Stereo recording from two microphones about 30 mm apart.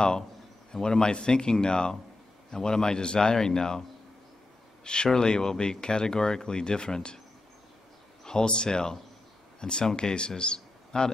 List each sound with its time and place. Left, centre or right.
0.7 s speech: left
4.8 s a man's voice: left
8.3 s speech: left